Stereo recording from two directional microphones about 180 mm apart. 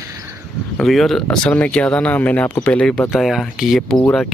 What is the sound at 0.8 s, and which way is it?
Speech, centre (ahead or behind).